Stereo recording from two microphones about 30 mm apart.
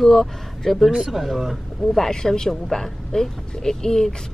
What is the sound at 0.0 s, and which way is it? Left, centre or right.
Speech, centre.